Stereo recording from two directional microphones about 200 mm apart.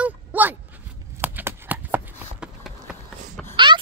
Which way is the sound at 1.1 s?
10° right (ahead or behind).